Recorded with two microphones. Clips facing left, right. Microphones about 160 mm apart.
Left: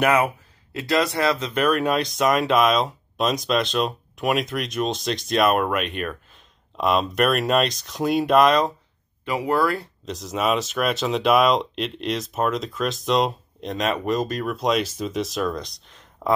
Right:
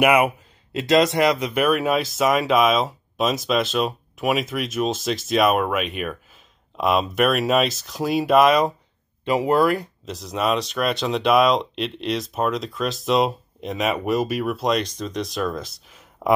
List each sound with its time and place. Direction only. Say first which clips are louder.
0.0 s a man's voice: right 2 dB; 10° right (ahead or behind)
9.2 s speech: right 3 dB; 25° right (ahead or behind)
10.0 s speech: left 1 dB; centre (ahead or behind)